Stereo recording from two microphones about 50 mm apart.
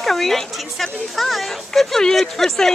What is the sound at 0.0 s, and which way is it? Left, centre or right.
A woman's voice, centre.